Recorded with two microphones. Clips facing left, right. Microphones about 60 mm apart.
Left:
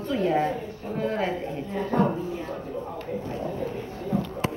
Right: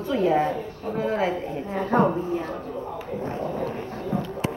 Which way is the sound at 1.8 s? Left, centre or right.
Right.